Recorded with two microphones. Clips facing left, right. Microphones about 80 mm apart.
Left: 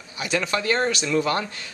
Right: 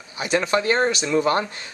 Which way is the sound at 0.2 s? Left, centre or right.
Right.